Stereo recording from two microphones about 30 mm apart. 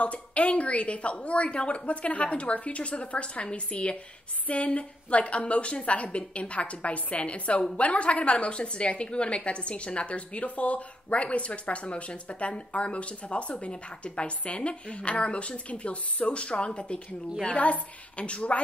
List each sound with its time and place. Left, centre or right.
0.0 s a woman's voice: left
17.5 s a woman's voice: left